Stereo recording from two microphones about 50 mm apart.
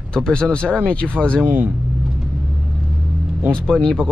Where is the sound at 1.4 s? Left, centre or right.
Right.